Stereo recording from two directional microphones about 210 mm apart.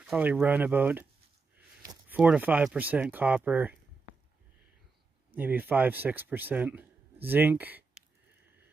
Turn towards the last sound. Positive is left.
turn(degrees=-10)  # may be behind; listen again after turning